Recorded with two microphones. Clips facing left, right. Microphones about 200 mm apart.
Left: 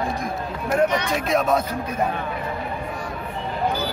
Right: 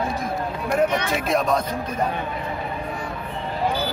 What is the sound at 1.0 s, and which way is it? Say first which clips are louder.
Speech: left 1 dB; centre (ahead or behind).